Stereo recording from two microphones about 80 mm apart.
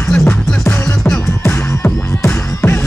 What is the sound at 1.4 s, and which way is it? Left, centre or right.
Music, left.